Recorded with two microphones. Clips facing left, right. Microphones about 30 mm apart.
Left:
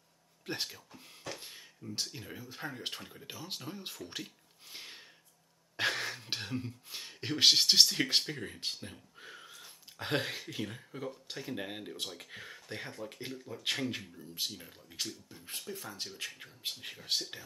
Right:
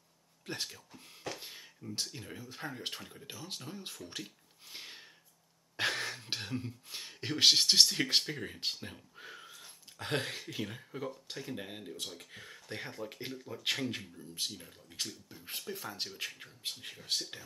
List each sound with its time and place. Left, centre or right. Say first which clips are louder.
0.5 s speech: left 2 dB; centre
1.3 s a sound: right 1 dB; centre
2.1 s speech: even; centre
15.4 s speech: right 2 dB; centre
16.3 s speech: left 1 dB; centre